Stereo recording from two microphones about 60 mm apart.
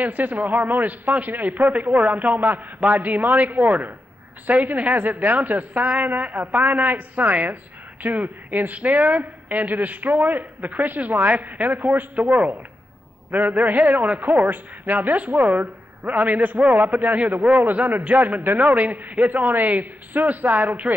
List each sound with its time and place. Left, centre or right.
0.0 s a man's voice: right